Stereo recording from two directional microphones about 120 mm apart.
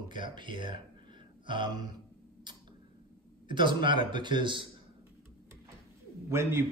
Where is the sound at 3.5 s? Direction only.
40° right (ahead or behind).